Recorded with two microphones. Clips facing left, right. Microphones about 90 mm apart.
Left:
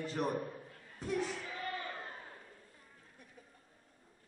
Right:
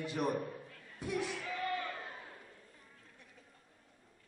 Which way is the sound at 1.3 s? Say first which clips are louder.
Right 3 dB; 30° left (ahead or behind).